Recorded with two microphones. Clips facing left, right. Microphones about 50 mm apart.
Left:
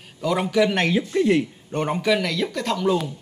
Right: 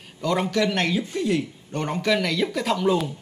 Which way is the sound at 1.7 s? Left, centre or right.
Centre.